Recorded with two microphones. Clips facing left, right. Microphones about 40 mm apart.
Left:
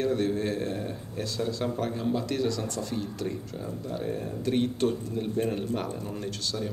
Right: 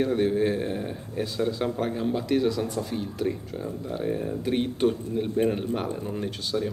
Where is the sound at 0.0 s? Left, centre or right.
Centre.